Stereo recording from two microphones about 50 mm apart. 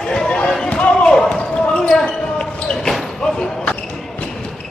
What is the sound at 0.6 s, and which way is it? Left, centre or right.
Basketball bounce, left.